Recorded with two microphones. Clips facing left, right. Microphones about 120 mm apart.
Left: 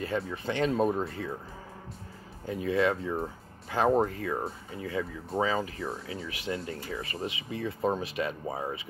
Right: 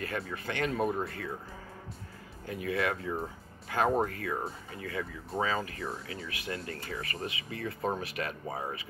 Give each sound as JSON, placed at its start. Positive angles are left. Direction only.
{"t": 0.0, "sound": "speech", "side_deg": 20}
{"t": 2.4, "sound": "speech", "side_deg": 25}